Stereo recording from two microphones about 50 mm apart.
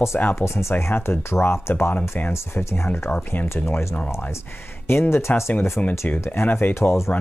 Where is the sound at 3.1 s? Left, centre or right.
Left.